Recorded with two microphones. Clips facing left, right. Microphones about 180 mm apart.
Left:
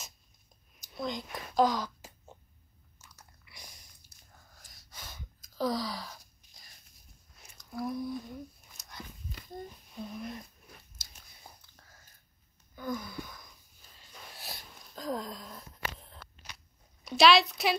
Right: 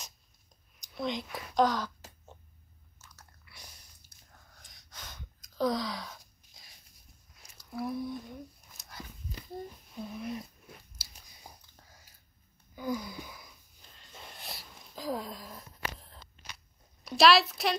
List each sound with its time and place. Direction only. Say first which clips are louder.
0.7 s a sound: right 2 dB; centre (ahead or behind)
3.0 s chewing: even; 10° left (ahead or behind)
4.3 s gasp: even; 5° left (ahead or behind)
7.5 s speech: even; centre (ahead or behind)
8.7 s a sound: right 1 dB; centre (ahead or behind)
11.0 s chewing: right 1 dB; 15° right (ahead or behind)
12.7 s wail: right 2 dB; 10° right (ahead or behind)
14.3 s sniff: left 1 dB; centre (ahead or behind)
17.0 s speech: even; centre (ahead or behind)